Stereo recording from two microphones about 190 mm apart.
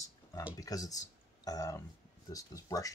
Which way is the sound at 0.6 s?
20° left (ahead or behind).